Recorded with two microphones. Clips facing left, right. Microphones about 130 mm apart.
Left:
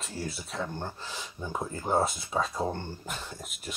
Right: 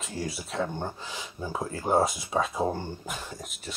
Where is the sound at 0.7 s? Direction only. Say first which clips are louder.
Right 3 dB; 15° right (ahead or behind).